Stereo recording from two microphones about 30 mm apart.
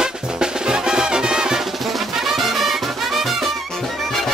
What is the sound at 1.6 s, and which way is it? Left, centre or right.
Music, centre.